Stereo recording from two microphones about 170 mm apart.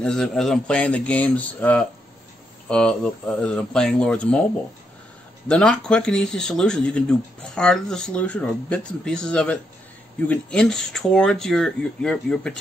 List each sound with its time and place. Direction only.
0.0 s speech: 5° left (ahead or behind)
5.5 s speech: 5° left (ahead or behind)